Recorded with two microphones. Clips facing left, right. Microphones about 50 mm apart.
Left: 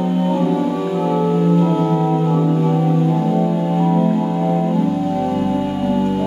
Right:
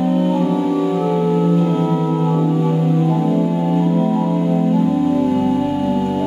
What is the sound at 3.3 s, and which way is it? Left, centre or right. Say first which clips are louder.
Organ: right 1 dB; centre.